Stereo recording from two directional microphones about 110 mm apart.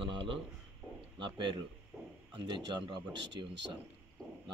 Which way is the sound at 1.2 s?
50° right (ahead or behind).